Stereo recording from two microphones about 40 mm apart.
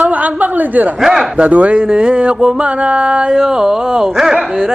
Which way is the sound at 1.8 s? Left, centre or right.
Right.